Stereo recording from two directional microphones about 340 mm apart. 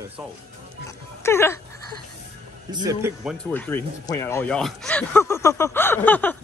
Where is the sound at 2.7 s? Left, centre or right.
Centre.